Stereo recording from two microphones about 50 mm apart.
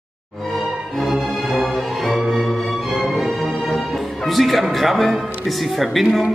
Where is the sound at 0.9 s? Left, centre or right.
Centre.